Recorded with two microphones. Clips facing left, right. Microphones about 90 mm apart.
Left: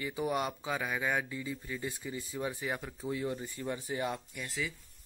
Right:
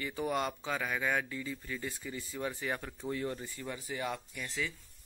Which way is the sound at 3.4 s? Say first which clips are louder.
Left 4 dB; 25° left (ahead or behind).